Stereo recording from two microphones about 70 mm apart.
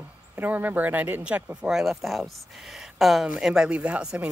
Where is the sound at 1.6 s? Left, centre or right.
Centre.